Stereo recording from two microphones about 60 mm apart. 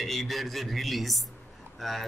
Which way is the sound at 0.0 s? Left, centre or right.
Centre.